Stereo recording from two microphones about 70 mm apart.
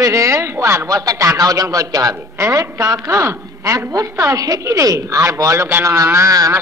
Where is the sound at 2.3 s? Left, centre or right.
Right.